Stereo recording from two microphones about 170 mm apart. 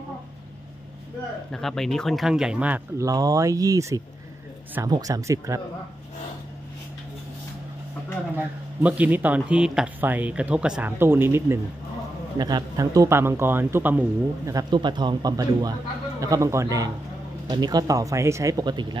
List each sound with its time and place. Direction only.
1.5 s speech: centre (ahead or behind)
3.1 s speech: 20° right (ahead or behind)
8.4 s speech: 10° right (ahead or behind)
14.5 s speech: 25° right (ahead or behind)